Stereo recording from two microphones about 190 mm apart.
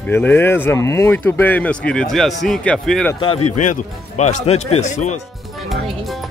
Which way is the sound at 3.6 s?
40° left (ahead or behind).